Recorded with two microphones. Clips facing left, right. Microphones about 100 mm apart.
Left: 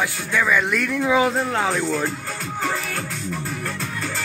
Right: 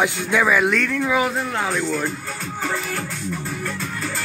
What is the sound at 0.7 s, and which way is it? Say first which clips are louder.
Speech: left 1 dB; 15° left (ahead or behind).